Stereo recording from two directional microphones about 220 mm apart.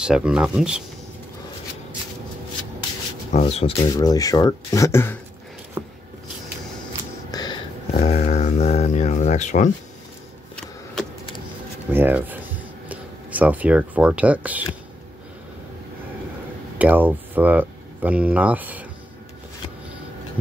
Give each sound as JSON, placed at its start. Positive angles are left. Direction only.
{"t": 0.0, "sound": "speech", "side_deg": -5}
{"t": 3.3, "sound": "speech", "side_deg": 30}
{"t": 3.7, "sound": "speech", "side_deg": 15}
{"t": 5.8, "sound": "a sound", "side_deg": -15}
{"t": 7.2, "sound": "a sound", "side_deg": 20}
{"t": 11.9, "sound": "speech", "side_deg": -10}
{"t": 16.7, "sound": "speech", "side_deg": -5}